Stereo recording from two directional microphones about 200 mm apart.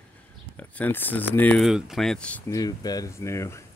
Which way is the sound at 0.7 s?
10° left (ahead or behind).